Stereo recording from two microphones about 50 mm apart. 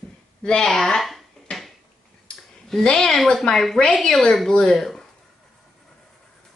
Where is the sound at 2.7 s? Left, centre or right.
Centre.